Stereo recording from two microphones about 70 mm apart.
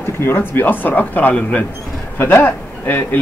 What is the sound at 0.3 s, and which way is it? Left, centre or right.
Speech, left.